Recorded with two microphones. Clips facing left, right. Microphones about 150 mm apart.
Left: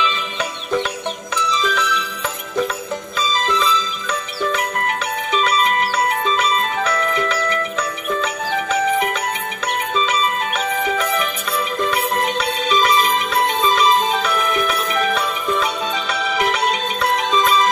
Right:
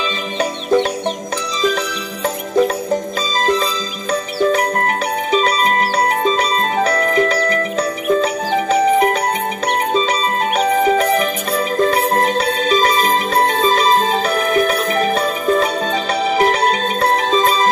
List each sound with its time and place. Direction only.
0.0 s music: 40° right (ahead or behind)